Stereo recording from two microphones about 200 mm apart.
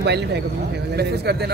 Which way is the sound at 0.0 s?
55° right (ahead or behind).